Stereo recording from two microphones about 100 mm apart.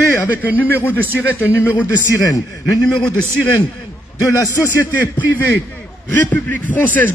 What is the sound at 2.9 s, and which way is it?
Speech, 5° left (ahead or behind).